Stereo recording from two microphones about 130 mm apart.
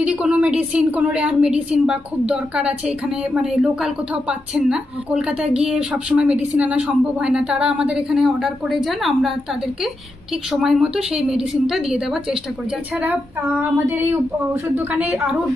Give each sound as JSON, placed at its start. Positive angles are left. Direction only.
{"t": 0.0, "sound": "a woman's voice", "side_deg": -10}
{"t": 10.5, "sound": "a woman's voice", "side_deg": -5}
{"t": 13.0, "sound": "a woman's voice", "side_deg": -15}